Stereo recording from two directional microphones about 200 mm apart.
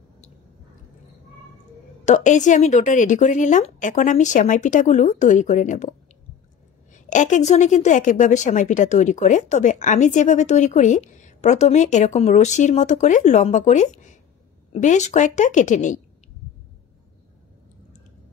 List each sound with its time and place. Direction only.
2.0 s a woman's voice: 40° left (ahead or behind)
6.9 s a woman's voice: 40° left (ahead or behind)